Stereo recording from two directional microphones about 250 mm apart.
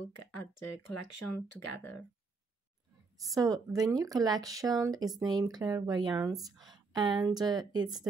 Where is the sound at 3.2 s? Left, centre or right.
Centre.